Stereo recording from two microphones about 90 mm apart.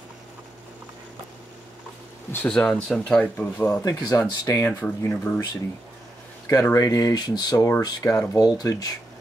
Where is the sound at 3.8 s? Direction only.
40° left (ahead or behind).